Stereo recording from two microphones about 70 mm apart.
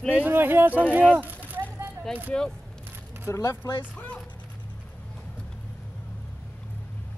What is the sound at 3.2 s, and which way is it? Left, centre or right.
Speech, left.